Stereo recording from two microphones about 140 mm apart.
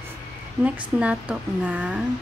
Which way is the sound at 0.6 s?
10° right (ahead or behind).